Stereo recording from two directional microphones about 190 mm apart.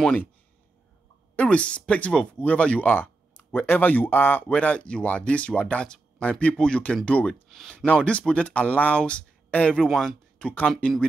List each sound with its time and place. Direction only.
0.0 s speech: 5° left (ahead or behind)
1.3 s speech: 5° left (ahead or behind)